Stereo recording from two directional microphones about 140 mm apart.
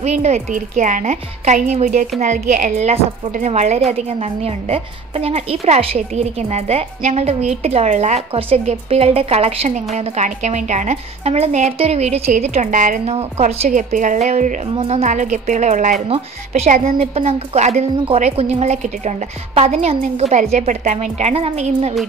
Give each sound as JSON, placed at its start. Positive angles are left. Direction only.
{"t": 0.0, "sound": "a woman's voice", "side_deg": -50}
{"t": 13.1, "sound": "a woman's voice", "side_deg": -50}
{"t": 16.1, "sound": "a woman's voice", "side_deg": -50}